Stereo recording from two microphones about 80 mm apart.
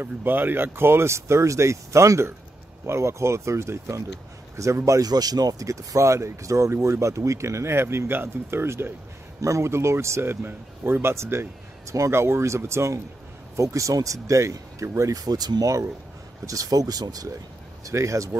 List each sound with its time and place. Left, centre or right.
0.0 s speech: right
17.8 s speech: right